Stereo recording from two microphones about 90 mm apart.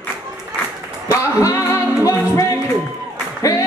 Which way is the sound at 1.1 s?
35° left (ahead or behind).